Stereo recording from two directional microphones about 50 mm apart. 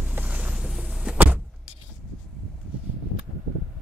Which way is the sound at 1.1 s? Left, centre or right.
Right.